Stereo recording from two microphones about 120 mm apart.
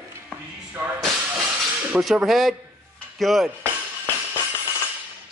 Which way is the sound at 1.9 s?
5° right (ahead or behind).